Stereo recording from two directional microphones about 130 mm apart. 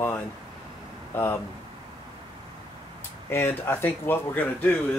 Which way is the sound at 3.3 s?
15° left (ahead or behind).